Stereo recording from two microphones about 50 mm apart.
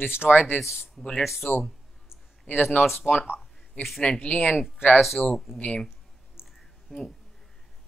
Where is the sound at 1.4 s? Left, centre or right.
Left.